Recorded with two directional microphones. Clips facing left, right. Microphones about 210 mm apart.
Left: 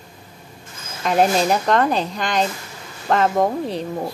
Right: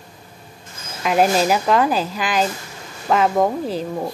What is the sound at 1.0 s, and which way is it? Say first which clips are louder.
Speech: right 1 dB; 5° right (ahead or behind).